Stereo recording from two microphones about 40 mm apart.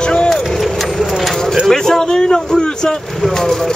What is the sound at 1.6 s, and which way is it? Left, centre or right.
Speech, centre.